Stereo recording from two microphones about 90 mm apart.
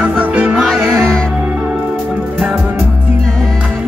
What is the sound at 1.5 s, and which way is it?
Music, 15° right (ahead or behind).